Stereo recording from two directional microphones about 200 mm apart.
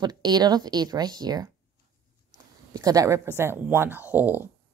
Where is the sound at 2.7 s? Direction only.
15° right (ahead or behind).